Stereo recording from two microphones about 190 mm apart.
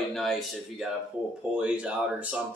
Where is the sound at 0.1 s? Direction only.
Centre (ahead or behind).